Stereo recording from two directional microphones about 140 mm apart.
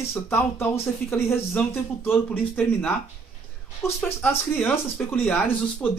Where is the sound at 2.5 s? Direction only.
10° left (ahead or behind).